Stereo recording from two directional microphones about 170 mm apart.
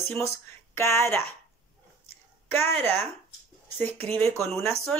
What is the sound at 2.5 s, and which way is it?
Speech, 15° left (ahead or behind).